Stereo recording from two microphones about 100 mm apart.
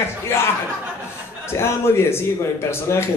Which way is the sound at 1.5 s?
25° left (ahead or behind).